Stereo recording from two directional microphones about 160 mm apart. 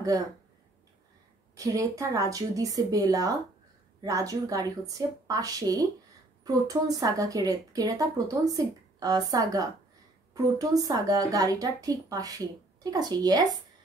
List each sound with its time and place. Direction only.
1.6 s speech: 20° right (ahead or behind)